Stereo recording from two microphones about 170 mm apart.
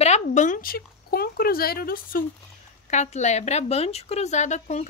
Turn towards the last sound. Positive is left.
turn(degrees=45)  # may be behind; listen again after turning